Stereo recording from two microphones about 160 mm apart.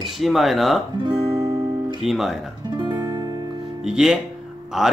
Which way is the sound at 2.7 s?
30° right (ahead or behind).